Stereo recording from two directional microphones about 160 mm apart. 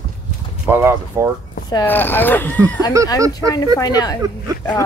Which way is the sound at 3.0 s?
20° right (ahead or behind).